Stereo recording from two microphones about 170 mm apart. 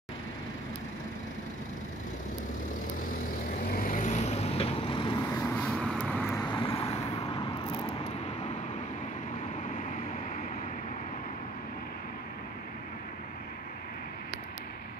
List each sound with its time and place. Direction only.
3.7 s vehicle: 50° left (ahead or behind); by 5.1 s 30° left (ahead or behind)
5.3 s vehicle: 15° left (ahead or behind)
6.4 s vehicle: 30° left (ahead or behind)